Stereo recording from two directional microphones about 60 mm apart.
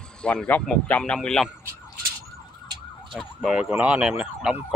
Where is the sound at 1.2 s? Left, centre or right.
Centre.